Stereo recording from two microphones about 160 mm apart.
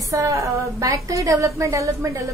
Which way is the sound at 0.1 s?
20° right (ahead or behind).